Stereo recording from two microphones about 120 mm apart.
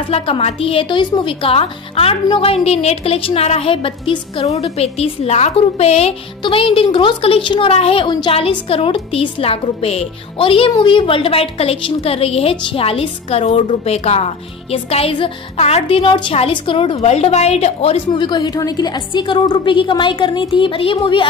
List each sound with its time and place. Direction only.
0.1 s a woman's voice: 55° left (ahead or behind)
6.4 s a woman's voice: 50° left (ahead or behind)
16.9 s a woman's voice: 60° left (ahead or behind)